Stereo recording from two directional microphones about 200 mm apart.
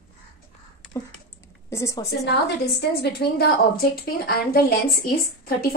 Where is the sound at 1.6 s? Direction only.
15° left (ahead or behind).